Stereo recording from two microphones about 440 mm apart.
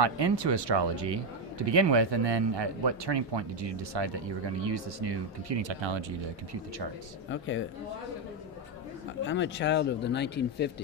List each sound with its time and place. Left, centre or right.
0.0 s speech: right
7.2 s speech: left
9.2 s speech: left